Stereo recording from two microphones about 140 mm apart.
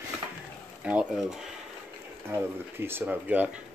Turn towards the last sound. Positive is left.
turn(degrees=-15)  # may be behind; listen again after turning